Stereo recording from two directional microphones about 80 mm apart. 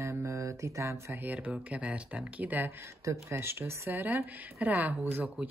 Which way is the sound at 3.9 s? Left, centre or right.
Right.